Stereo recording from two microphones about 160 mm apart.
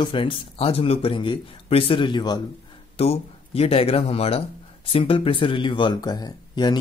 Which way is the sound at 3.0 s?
40° left (ahead or behind).